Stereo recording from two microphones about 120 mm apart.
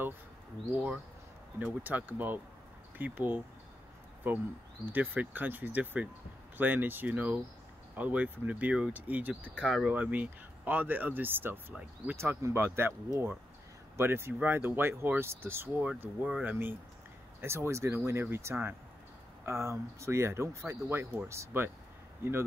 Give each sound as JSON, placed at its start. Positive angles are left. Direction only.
{"t": 1.6, "sound": "speech", "side_deg": -15}
{"t": 17.4, "sound": "speech", "side_deg": -20}